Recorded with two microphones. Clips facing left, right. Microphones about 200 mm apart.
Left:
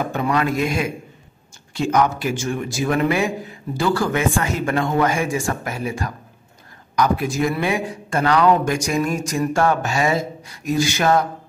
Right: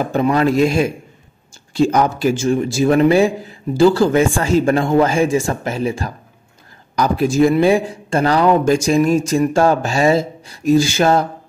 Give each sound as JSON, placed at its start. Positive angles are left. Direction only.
{"t": 0.0, "sound": "a man's voice", "side_deg": -30}